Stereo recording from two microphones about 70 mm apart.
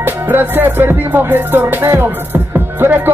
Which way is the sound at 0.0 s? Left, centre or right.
Right.